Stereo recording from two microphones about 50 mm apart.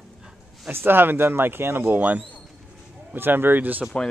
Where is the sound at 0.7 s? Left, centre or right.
Right.